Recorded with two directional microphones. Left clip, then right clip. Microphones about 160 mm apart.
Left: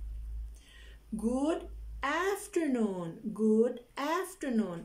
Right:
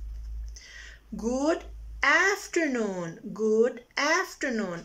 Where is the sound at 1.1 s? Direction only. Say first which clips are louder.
Right 5 dB; 25° left (ahead or behind).